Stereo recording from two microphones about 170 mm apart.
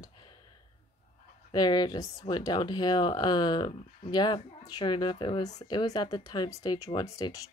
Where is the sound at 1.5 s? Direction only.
25° left (ahead or behind).